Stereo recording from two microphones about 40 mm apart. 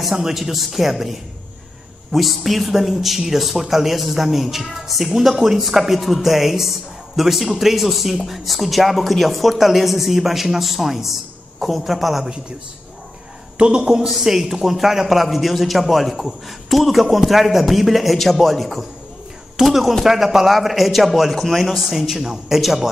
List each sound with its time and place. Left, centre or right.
0.1 s speech: centre
2.1 s speech: centre
13.6 s a man's voice: right
14.2 s a man's voice: centre
21.7 s a man's voice: centre